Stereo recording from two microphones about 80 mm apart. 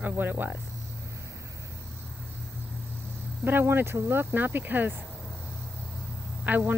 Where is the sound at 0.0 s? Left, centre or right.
Right.